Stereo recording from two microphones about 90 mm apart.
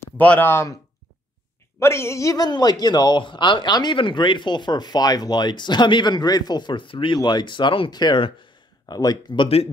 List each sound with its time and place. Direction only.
0.2 s speech: 15° left (ahead or behind)
0.5 s a woman's voice: 30° left (ahead or behind)
1.8 s a woman's voice: 30° left (ahead or behind)
2.4 s speech: 50° left (ahead or behind); by 7.2 s 70° left (ahead or behind)
7.2 s speech: 55° left (ahead or behind); by 7.9 s 70° left (ahead or behind)
7.9 s speech: 55° left (ahead or behind)